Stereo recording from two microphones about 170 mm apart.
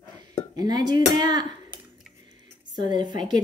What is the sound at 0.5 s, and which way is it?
Speech, 25° right (ahead or behind).